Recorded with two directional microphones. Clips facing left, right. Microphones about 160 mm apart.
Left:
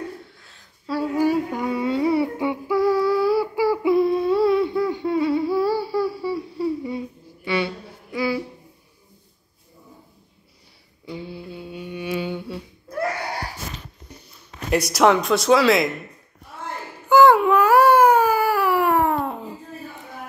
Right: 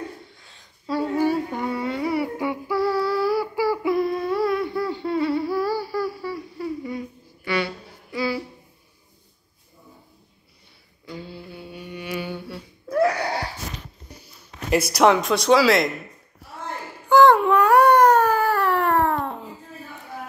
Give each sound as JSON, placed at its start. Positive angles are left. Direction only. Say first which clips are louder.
{"t": 0.4, "sound": "humming", "louder": "even", "side_deg": 5}
{"t": 7.4, "sound": "a sound", "louder": "left 1 dB", "side_deg": 20}
{"t": 11.1, "sound": "humming", "louder": "left 3 dB", "side_deg": 20}
{"t": 14.7, "sound": "speech", "louder": "even", "side_deg": 0}
{"t": 17.1, "sound": "baby cry", "louder": "left 1 dB", "side_deg": 5}